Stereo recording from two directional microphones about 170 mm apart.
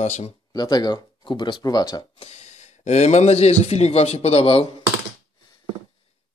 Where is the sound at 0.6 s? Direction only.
25° left (ahead or behind).